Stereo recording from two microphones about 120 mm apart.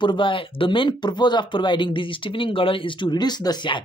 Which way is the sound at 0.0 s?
40° left (ahead or behind).